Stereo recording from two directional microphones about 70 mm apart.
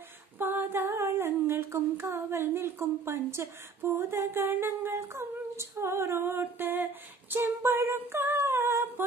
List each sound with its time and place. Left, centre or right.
0.4 s humming: right
6.4 s female singing: right